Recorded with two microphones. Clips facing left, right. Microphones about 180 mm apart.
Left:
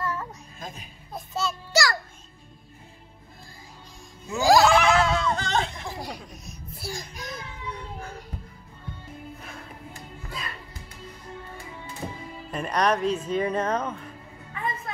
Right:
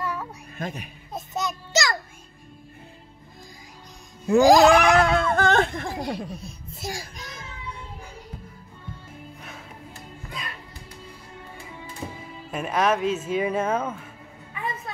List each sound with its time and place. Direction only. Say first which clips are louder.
0.0 s child singing: even; 15° right (ahead or behind)
0.6 s speech: right 8 dB; 65° right (ahead or behind)
1.1 s a child's voice: right 1 dB; 20° right (ahead or behind)
4.4 s cat: right 4 dB; 15° right (ahead or behind)
4.9 s a sound: right 3 dB; 55° right (ahead or behind)
5.9 s speech: right 7 dB; 25° right (ahead or behind)
6.8 s cat: right 2 dB; 15° right (ahead or behind)
9.4 s music: even; centre (ahead or behind)
12.4 s speech: right 1 dB; 5° right (ahead or behind)